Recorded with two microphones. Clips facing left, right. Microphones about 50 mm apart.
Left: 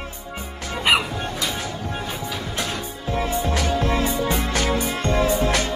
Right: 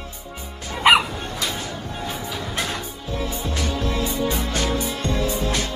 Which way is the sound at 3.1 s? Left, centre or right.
Left.